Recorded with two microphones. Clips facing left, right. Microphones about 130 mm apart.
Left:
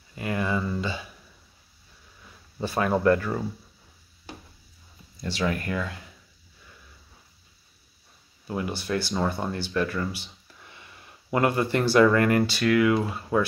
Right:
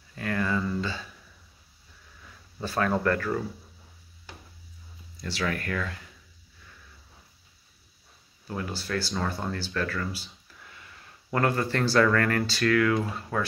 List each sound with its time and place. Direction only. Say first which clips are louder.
0.1 s speech: left 1 dB; 15° left (ahead or behind)
2.6 s speech: left 3 dB; 15° left (ahead or behind)
5.2 s speech: left 3 dB; 20° left (ahead or behind)
8.5 s speech: left 4 dB; 15° left (ahead or behind)